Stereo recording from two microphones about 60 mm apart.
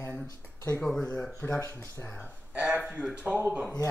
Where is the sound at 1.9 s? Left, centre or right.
Left.